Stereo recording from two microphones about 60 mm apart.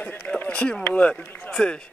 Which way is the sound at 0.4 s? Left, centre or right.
Left.